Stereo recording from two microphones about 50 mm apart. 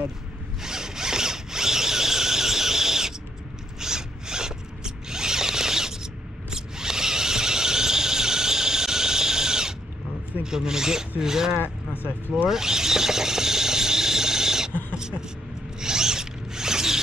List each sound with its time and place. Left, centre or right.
0.6 s zipper: centre
6.5 s squeal: centre
10.4 s speech: centre
11.6 s speech: left
12.4 s a sound: centre
14.7 s a sound: left
15.0 s vehicle: centre
15.8 s zipper: centre